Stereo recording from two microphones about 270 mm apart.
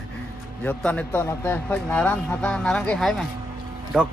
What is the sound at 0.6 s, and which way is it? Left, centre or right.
Speech, centre.